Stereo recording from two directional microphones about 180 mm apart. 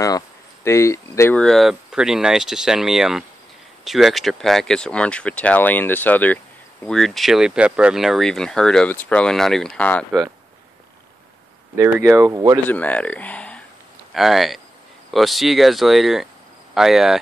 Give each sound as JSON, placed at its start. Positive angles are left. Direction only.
{"t": 0.7, "sound": "speech", "side_deg": 15}
{"t": 1.4, "sound": "speech", "side_deg": 0}
{"t": 12.1, "sound": "speech", "side_deg": -15}
{"t": 12.6, "sound": "speech", "side_deg": 10}